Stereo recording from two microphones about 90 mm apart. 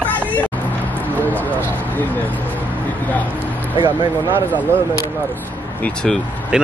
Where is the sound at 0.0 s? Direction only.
15° left (ahead or behind).